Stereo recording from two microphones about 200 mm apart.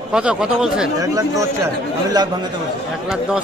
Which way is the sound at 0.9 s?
15° right (ahead or behind).